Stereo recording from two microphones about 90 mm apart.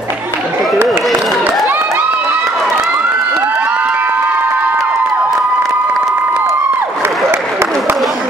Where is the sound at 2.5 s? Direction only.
Centre (ahead or behind).